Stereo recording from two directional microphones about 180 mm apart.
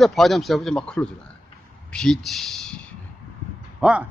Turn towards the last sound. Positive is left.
turn(degrees=-5)  # may be behind; listen again after turning